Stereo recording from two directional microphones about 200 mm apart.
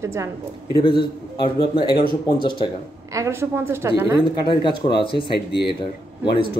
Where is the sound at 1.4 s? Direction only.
25° left (ahead or behind).